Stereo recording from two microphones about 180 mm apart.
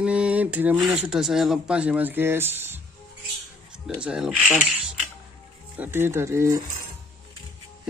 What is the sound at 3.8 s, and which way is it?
Speech, 5° right (ahead or behind).